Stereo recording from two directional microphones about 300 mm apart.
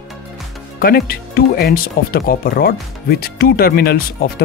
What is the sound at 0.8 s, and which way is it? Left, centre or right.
Speech, left.